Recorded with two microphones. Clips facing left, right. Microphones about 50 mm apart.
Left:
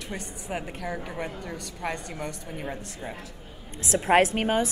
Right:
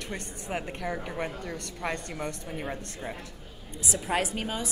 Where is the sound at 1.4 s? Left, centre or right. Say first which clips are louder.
Left 1 dB; centre.